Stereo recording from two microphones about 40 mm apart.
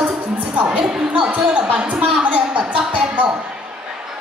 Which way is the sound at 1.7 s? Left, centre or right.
Right.